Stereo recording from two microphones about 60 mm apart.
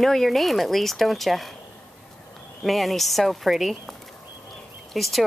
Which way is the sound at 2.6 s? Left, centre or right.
Centre.